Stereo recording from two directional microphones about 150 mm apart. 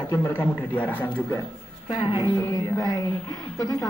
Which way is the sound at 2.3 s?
20° left (ahead or behind).